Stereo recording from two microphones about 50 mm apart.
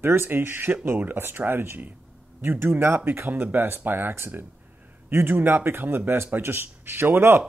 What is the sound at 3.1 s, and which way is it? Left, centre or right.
Speech, right.